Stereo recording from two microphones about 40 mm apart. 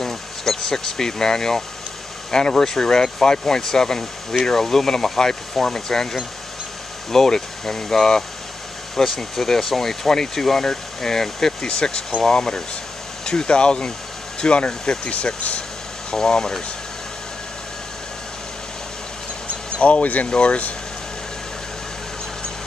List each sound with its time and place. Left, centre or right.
0.0 s speech: centre
7.1 s speech: centre; by 15.6 s left
16.1 s speech: centre
19.8 s speech: left